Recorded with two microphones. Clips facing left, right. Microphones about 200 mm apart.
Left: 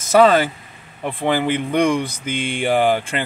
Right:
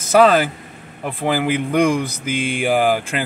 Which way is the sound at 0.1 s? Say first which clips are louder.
Even; 5° right (ahead or behind).